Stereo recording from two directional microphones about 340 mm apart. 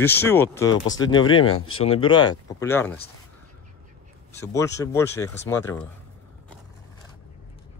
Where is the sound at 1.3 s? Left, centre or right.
Left.